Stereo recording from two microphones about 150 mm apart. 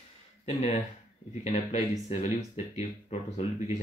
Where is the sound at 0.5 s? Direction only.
45° left (ahead or behind).